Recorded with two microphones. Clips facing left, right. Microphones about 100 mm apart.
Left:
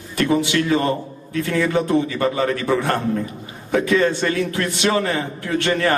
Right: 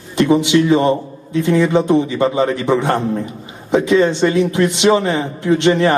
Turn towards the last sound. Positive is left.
turn(degrees=-20)  # may be behind; listen again after turning